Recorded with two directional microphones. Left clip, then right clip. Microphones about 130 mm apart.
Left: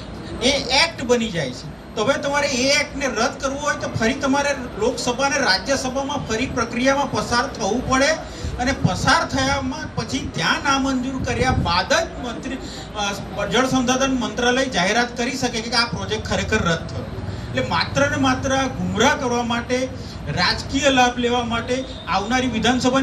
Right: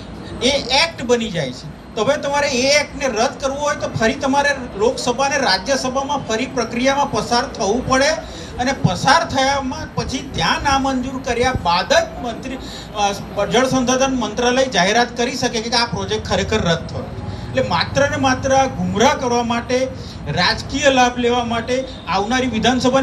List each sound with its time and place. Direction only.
0.4 s a woman's voice: 50° right (ahead or behind)